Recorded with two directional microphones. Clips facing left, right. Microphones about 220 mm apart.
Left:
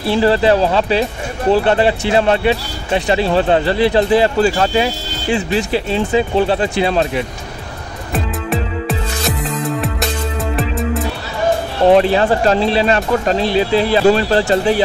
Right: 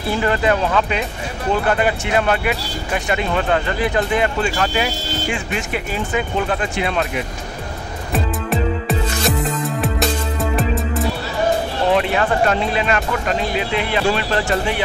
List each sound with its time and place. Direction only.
0.1 s speech: 30° left (ahead or behind)
8.1 s music: centre (ahead or behind)
10.5 s music: centre (ahead or behind)
11.9 s speech: 35° left (ahead or behind)